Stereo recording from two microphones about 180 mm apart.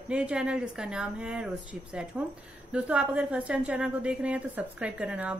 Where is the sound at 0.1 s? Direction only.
5° right (ahead or behind).